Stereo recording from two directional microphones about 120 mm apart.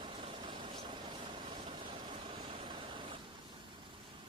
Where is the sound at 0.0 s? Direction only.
45° right (ahead or behind).